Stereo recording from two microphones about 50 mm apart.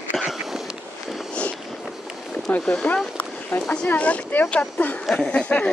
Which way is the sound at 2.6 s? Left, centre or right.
Left.